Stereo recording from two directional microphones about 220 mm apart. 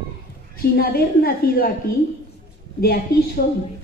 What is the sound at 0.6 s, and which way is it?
A woman's voice, 45° left (ahead or behind).